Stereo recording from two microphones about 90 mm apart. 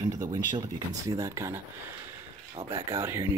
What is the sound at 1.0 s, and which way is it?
Speech, 35° right (ahead or behind).